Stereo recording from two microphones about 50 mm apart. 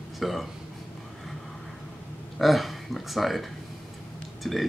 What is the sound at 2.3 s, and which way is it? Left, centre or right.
Speech, centre.